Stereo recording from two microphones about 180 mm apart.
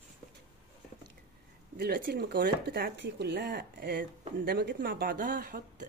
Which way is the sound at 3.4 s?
55° right (ahead or behind).